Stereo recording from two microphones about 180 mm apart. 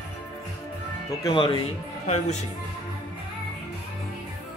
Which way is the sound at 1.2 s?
30° left (ahead or behind).